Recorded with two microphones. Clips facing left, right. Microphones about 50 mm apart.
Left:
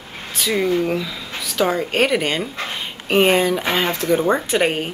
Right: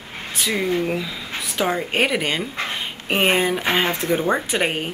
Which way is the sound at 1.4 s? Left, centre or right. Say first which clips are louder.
Left 4 dB; right.